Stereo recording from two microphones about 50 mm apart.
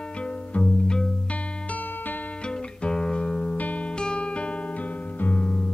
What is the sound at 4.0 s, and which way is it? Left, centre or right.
Music, centre.